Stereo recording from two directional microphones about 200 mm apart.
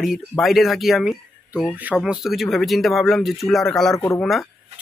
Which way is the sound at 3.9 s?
15° left (ahead or behind).